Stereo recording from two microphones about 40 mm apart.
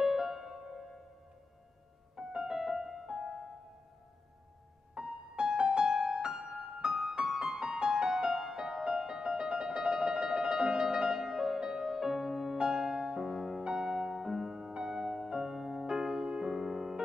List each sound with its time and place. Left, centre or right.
0.0 s music: centre
2.1 s music: centre
4.9 s music: right
5.9 s music: centre
7.3 s music: right